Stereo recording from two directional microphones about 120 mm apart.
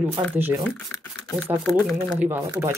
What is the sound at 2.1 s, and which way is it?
Speech, 15° right (ahead or behind).